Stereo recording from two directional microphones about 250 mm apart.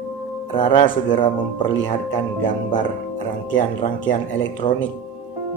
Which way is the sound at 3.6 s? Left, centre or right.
Left.